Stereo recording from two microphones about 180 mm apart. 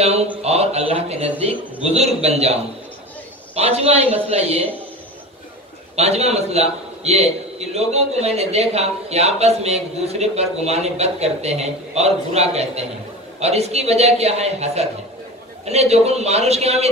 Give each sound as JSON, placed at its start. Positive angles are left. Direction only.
{"t": 0.0, "sound": "a sound", "side_deg": -35}
{"t": 0.4, "sound": "a man's voice", "side_deg": -35}
{"t": 5.9, "sound": "a man's voice", "side_deg": -35}